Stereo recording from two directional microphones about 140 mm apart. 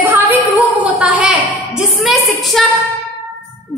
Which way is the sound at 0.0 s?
10° right (ahead or behind).